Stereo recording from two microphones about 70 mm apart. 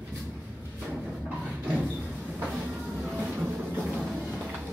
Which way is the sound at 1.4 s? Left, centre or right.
Centre.